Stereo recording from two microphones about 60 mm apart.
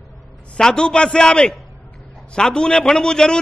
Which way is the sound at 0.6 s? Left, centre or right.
Centre.